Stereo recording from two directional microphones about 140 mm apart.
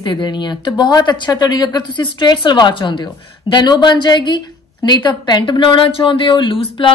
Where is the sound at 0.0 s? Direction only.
35° left (ahead or behind).